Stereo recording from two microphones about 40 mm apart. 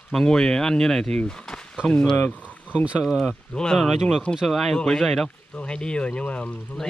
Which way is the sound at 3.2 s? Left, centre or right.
Centre.